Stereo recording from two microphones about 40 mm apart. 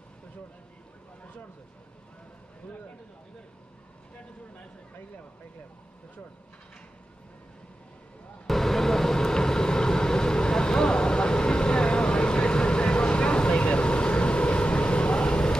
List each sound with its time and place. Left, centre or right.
8.5 s vehicle: centre; by 15.5 s left